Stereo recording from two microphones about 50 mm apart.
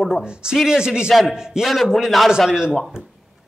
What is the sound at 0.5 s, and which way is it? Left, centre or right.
Speech, centre.